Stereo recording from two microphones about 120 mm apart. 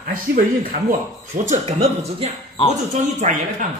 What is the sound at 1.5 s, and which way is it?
Speech, 70° right (ahead or behind).